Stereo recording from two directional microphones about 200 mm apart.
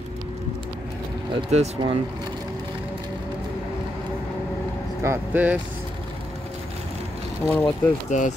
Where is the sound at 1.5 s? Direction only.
30° right (ahead or behind).